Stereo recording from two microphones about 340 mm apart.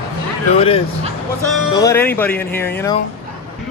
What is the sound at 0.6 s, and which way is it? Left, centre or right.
Speech, centre.